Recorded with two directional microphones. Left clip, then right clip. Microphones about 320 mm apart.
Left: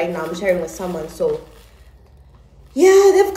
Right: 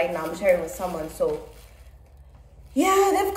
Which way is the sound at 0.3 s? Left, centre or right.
Centre.